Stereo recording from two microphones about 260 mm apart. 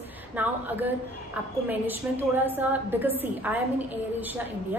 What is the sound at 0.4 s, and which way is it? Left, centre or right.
A woman's voice, centre.